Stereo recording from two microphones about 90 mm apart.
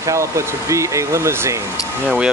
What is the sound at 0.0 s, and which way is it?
Speech, 35° right (ahead or behind).